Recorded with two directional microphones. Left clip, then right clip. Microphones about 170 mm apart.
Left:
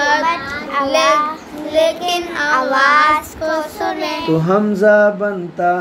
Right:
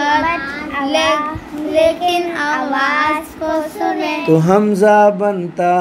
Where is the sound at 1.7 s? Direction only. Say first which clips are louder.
Right 2 dB; 20° left (ahead or behind).